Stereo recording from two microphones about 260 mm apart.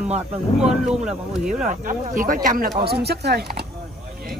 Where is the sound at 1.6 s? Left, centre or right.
Right.